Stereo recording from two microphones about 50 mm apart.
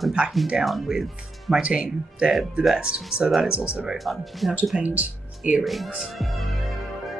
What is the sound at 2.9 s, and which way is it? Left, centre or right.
Speech, centre.